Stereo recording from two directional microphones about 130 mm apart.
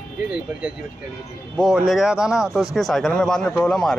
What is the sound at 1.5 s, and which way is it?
Speech, centre (ahead or behind).